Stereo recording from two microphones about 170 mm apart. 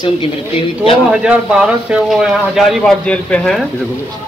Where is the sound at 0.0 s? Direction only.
30° left (ahead or behind).